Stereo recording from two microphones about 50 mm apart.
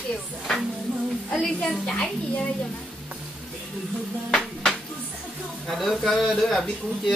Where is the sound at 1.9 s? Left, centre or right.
Centre.